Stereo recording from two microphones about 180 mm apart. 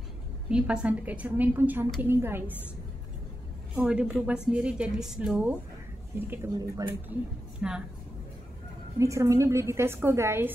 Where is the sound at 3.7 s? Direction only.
5° right (ahead or behind).